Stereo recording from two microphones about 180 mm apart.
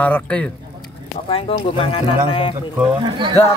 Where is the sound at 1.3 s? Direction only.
30° left (ahead or behind).